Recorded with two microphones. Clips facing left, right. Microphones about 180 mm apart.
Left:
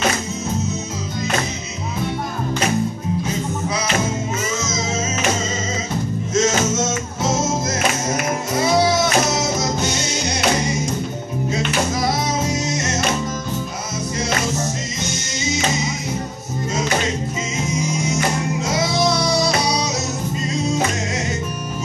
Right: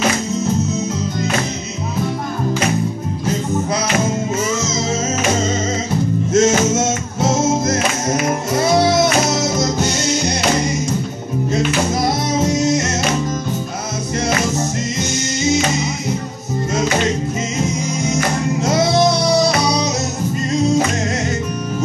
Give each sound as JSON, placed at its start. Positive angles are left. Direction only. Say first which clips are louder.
{"t": 6.3, "sound": "music", "louder": "right 4 dB", "side_deg": -55}